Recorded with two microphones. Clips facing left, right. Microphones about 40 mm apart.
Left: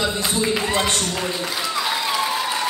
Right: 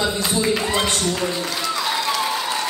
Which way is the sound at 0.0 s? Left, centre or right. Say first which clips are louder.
Right 1 dB; centre.